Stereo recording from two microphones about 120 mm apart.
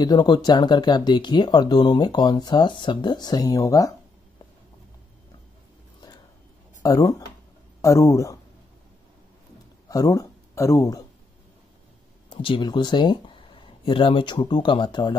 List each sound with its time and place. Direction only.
0.0 s speech: 35° left (ahead or behind)
6.8 s speech: 30° left (ahead or behind)
9.8 s speech: 30° left (ahead or behind)
12.3 s speech: 45° left (ahead or behind)